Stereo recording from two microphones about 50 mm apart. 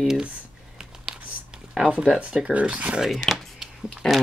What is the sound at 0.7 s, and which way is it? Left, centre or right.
Crumpling, centre.